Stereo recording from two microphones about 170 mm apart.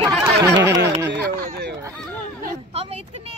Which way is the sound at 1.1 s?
80° right.